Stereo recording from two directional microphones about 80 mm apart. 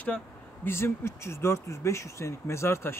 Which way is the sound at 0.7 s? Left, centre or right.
Left.